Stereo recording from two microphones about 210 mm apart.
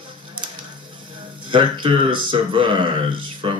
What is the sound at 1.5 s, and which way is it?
Speech, 25° right (ahead or behind).